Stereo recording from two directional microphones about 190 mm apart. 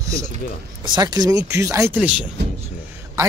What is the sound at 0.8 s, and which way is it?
Speech, 20° right (ahead or behind).